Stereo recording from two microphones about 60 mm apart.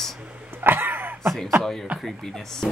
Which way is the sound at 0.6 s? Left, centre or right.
Right.